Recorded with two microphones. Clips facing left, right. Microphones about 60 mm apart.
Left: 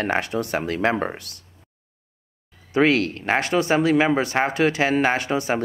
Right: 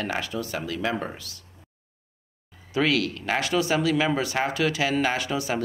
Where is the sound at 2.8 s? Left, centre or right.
Left.